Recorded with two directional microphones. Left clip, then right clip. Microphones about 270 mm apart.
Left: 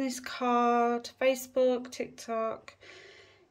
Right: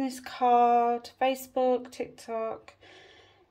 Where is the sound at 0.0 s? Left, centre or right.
Centre.